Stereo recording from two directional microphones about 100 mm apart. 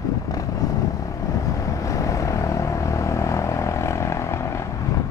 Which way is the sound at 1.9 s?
30° left (ahead or behind).